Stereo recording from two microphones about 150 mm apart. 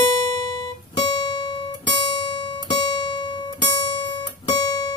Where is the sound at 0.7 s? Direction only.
30° left (ahead or behind).